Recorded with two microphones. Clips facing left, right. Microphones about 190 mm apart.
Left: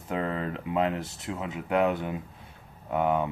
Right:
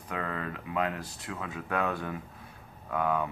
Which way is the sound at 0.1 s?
25° left (ahead or behind).